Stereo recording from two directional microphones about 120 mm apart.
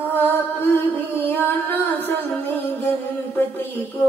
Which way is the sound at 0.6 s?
15° left (ahead or behind).